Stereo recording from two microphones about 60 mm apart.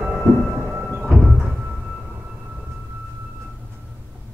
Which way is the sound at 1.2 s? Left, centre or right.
Centre.